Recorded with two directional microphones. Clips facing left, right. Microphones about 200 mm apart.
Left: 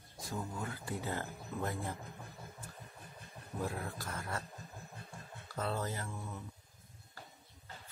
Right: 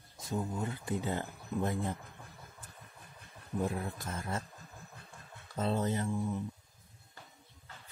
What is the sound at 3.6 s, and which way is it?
Speech, 20° right (ahead or behind).